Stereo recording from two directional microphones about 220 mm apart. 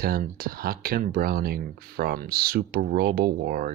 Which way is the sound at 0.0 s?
40° right (ahead or behind).